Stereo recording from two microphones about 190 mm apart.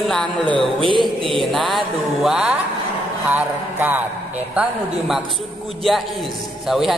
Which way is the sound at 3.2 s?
10° right (ahead or behind).